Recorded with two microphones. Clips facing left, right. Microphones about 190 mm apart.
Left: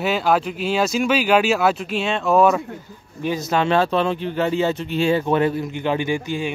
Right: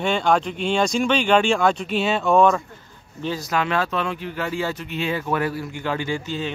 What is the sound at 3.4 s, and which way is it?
Speech, 30° left (ahead or behind).